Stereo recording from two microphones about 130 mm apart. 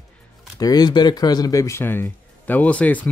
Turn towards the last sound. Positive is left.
turn(degrees=10)  # may be behind; listen again after turning